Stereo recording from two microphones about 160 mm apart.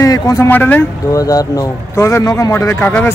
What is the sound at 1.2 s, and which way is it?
A man's voice, 20° left (ahead or behind).